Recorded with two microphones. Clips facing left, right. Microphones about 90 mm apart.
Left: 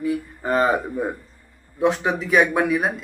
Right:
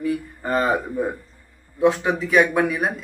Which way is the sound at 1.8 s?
15° left (ahead or behind).